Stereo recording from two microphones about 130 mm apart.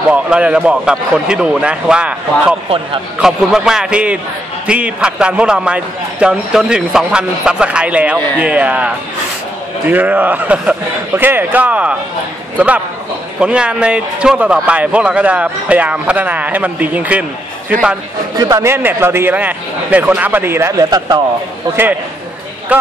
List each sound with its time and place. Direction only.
0.1 s a man's voice: 10° right (ahead or behind)
18.4 s a man's voice: 25° right (ahead or behind)
22.7 s a man's voice: 10° right (ahead or behind)